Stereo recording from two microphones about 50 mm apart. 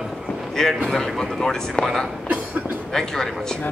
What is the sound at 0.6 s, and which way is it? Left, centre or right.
Speech, centre.